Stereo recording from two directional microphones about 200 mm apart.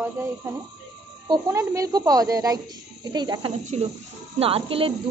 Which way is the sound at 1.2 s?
15° right (ahead or behind).